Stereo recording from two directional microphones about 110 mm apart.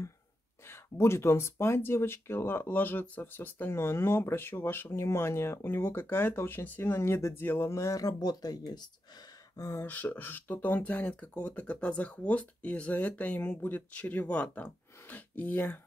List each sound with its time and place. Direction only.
0.7 s speech: 25° left (ahead or behind)
9.6 s speech: 25° left (ahead or behind)